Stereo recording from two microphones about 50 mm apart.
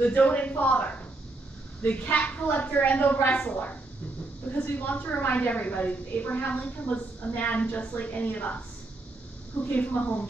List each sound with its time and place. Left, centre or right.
0.0 s a woman's voice: left
4.6 s a woman's voice: left
9.7 s a woman's voice: left